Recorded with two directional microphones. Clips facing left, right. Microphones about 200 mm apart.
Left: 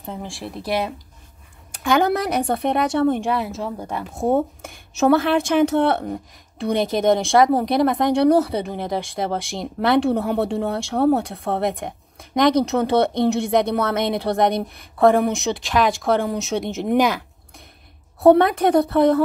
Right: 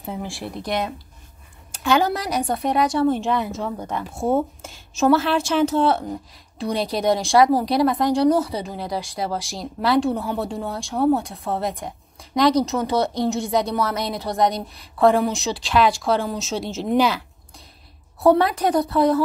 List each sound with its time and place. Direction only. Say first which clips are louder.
0.0 s speech: right 1 dB; 5° right (ahead or behind); by 1.0 s 10° left (ahead or behind)
1.7 s speech: left 1 dB; 55° left (ahead or behind)
3.2 s speech: even; 5° left (ahead or behind)
3.9 s speech: left 1 dB; 15° left (ahead or behind)
4.6 s speech: left 1 dB; 60° left (ahead or behind)
16.8 s speech: left 1 dB; 15° left (ahead or behind)
18.2 s speech: left 3 dB; 55° left (ahead or behind)